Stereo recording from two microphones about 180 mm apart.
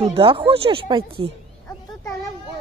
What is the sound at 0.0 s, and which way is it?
Speech, 30° right (ahead or behind).